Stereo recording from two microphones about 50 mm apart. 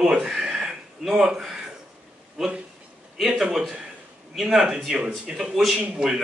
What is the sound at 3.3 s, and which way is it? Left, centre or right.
Speech, centre.